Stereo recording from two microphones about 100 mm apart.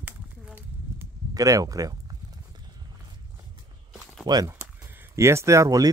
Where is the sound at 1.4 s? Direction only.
35° right (ahead or behind).